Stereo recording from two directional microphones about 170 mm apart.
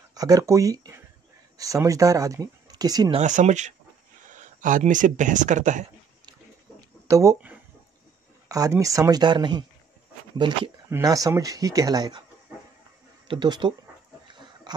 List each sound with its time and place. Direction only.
0.1 s speech: 20° right (ahead or behind)
3.2 s speech: 45° right (ahead or behind)
7.1 s speech: 15° right (ahead or behind)
13.3 s speech: 25° right (ahead or behind)
14.2 s pig: 25° right (ahead or behind)